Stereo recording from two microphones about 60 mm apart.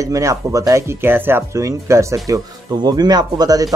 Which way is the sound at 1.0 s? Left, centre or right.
Right.